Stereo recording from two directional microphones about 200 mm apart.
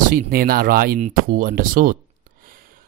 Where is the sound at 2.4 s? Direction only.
45° right (ahead or behind).